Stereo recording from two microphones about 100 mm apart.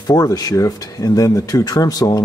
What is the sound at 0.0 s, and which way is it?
Speech, 40° left (ahead or behind).